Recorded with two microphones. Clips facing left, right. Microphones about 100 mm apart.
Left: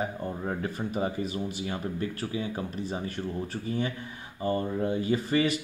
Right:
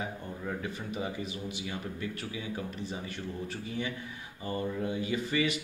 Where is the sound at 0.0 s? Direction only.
40° left (ahead or behind).